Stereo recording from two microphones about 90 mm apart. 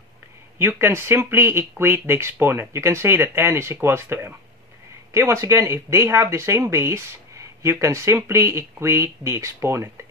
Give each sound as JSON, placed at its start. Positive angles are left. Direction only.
{"t": 0.6, "sound": "speech", "side_deg": -25}